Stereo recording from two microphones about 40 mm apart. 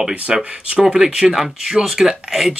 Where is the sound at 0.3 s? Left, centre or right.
Centre.